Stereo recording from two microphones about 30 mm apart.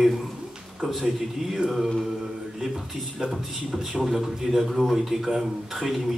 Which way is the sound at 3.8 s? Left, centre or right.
Centre.